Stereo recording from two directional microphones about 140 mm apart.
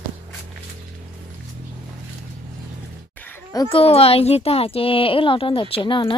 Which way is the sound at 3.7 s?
40° left (ahead or behind).